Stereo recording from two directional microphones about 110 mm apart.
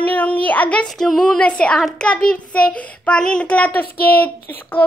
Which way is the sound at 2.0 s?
10° left (ahead or behind).